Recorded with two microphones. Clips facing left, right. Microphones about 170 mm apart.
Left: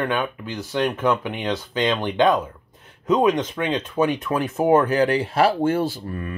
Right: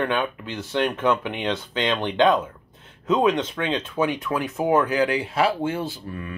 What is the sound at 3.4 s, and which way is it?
Speech, 15° left (ahead or behind).